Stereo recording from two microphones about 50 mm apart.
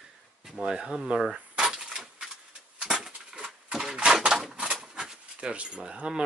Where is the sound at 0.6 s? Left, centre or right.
Centre.